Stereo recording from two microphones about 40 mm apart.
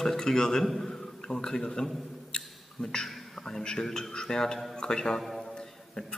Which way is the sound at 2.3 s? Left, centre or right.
Centre.